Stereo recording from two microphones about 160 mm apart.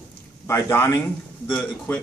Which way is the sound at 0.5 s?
15° left (ahead or behind).